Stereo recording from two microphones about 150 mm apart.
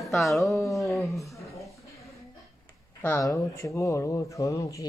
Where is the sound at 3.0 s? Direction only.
20° left (ahead or behind).